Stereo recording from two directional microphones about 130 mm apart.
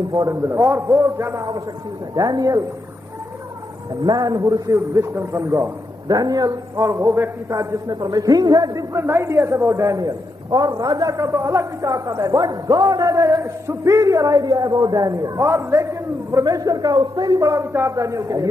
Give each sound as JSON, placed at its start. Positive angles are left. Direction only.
{"t": 0.1, "sound": "a man's voice", "side_deg": -25}
{"t": 4.0, "sound": "a man's voice", "side_deg": -30}